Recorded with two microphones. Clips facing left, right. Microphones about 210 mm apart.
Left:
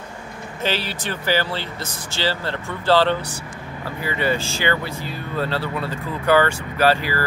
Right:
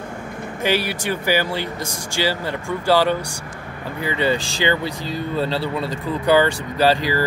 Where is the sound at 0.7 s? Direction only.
10° right (ahead or behind).